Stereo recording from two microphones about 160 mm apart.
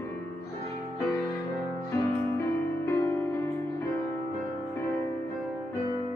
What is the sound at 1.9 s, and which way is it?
Music, 20° left (ahead or behind).